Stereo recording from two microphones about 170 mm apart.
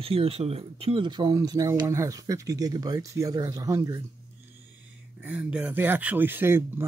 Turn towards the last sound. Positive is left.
turn(degrees=-15)  # may be behind; listen again after turning